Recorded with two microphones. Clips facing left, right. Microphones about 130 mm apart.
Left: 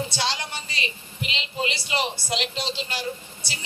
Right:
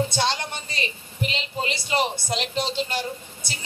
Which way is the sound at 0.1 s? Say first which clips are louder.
Right 3 dB; 50° right (ahead or behind).